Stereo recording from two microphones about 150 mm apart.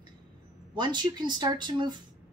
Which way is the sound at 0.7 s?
30° right (ahead or behind).